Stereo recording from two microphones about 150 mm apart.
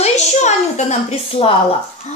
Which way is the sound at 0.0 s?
50° left (ahead or behind).